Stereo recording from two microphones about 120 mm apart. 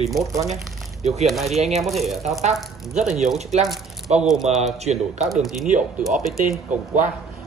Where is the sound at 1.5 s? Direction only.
65° right (ahead or behind).